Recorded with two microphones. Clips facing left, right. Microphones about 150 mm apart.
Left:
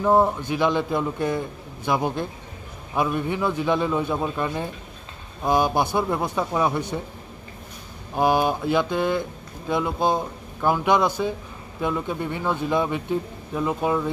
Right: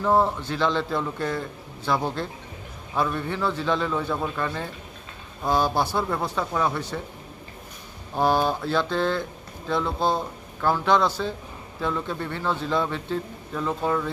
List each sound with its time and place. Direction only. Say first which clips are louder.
0.0 s speech: left 3 dB; 15° left (ahead or behind)
8.2 s speech: left 2 dB; 15° left (ahead or behind)